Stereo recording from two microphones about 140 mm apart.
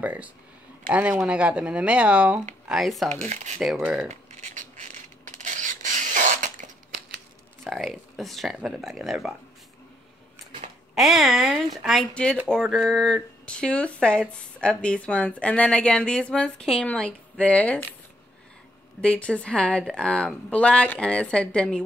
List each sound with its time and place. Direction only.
0.0 s speech: 10° right (ahead or behind)
3.1 s speech: 55° right (ahead or behind)
3.7 s speech: 10° right (ahead or behind)
4.1 s rub: 60° right (ahead or behind)
7.6 s speech: centre (ahead or behind)
11.0 s speech: centre (ahead or behind)
18.9 s speech: 10° left (ahead or behind)